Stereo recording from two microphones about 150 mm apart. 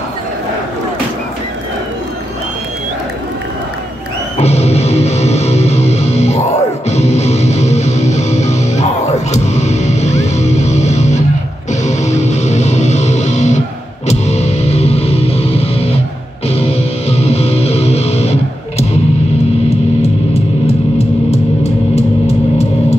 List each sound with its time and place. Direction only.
4.4 s music: 45° left (ahead or behind)
21.9 s music: 45° left (ahead or behind)